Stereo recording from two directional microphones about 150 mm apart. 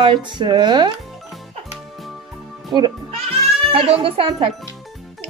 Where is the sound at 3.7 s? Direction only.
40° right (ahead or behind).